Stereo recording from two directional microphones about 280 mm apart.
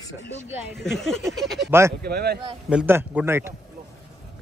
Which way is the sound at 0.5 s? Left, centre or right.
Centre.